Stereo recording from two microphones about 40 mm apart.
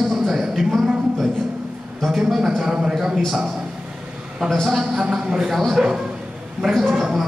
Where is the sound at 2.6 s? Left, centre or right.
Centre.